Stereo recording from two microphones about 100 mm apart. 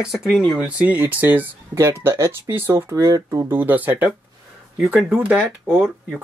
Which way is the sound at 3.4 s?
20° right (ahead or behind).